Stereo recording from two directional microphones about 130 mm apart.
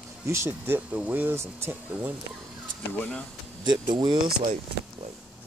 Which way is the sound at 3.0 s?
10° left (ahead or behind).